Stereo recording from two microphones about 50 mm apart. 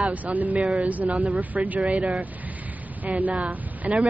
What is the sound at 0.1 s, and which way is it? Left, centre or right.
Speech, right.